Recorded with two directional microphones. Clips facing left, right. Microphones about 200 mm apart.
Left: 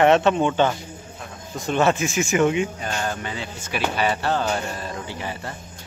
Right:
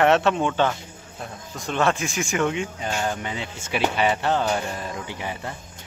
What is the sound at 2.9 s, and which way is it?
Speech, 10° right (ahead or behind).